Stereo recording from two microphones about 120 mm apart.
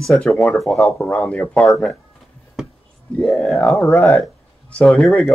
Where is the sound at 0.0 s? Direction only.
5° left (ahead or behind).